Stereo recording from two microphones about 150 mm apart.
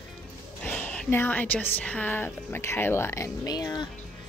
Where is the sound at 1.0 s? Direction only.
15° left (ahead or behind).